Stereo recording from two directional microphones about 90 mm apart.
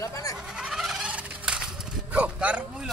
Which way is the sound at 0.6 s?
5° right (ahead or behind).